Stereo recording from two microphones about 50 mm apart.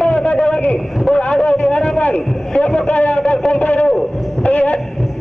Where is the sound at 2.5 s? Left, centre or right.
Centre.